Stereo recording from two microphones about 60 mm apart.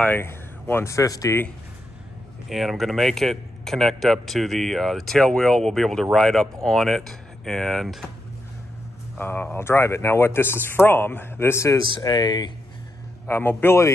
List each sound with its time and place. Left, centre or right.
0.2 s speech: left
0.9 s speech: left
2.5 s a man's voice: centre
9.2 s speech: left
9.6 s a man's voice: left
12.1 s speech: left
13.3 s speech: left